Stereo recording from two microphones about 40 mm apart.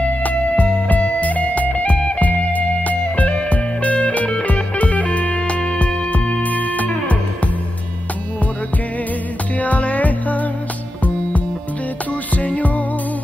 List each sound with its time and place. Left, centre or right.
0.2 s music: left
6.4 s music: left
9.6 s music: left
12.4 s music: left